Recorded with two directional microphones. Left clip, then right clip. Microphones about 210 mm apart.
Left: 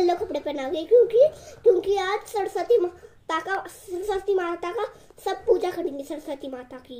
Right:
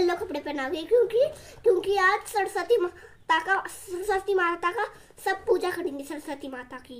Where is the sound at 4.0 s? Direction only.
20° right (ahead or behind).